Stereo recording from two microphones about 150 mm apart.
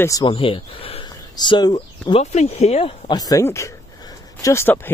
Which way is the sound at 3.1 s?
25° left (ahead or behind).